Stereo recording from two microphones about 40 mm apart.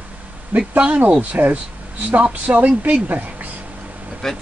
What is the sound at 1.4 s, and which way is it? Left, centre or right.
Speech, right.